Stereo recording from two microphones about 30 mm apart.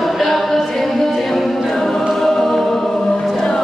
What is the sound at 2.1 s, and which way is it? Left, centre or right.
Music, centre.